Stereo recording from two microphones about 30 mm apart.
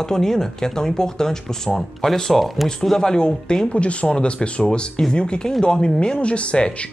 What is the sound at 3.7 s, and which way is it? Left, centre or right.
Speech, left.